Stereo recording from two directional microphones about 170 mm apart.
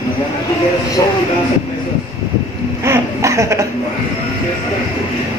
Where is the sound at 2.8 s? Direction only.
15° right (ahead or behind).